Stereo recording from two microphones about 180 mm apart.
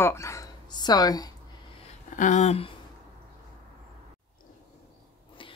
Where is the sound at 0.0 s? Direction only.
15° left (ahead or behind).